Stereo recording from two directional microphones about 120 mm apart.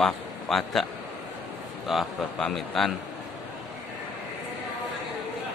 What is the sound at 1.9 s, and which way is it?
A man's voice, centre (ahead or behind).